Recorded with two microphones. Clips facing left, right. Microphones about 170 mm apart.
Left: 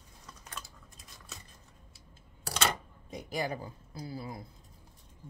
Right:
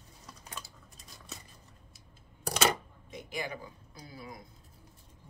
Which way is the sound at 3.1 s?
40° left (ahead or behind).